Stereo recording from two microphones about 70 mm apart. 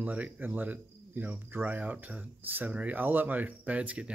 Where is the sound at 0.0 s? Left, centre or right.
Right.